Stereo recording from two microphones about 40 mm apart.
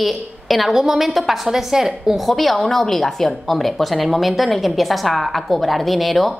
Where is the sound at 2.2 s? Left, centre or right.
Centre.